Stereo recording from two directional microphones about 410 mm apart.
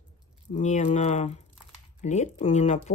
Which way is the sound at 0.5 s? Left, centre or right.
Centre.